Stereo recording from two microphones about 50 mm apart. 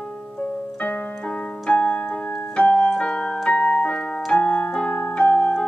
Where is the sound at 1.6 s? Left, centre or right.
Left.